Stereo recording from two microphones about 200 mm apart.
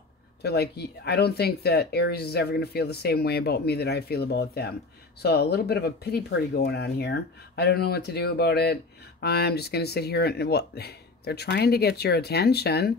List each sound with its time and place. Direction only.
0.4 s speech: 55° left (ahead or behind)